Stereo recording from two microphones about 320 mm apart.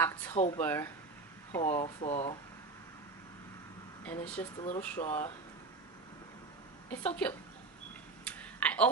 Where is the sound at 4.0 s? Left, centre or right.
Centre.